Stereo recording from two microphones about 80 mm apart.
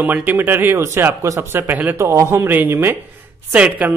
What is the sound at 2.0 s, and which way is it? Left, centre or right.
A man's voice, right.